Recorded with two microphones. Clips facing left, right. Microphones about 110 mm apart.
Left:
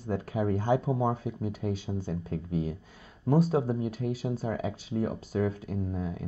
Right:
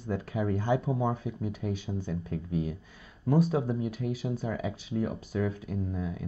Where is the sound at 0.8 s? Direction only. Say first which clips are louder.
Left 1 dB; 30° left (ahead or behind).